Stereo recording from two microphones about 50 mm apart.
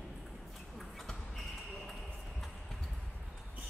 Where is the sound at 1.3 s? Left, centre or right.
Centre.